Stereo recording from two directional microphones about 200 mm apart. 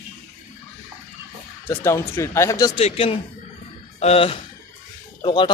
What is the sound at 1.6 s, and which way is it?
A man's voice, 15° left (ahead or behind).